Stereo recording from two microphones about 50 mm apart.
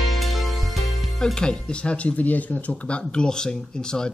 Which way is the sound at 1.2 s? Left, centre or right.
Centre.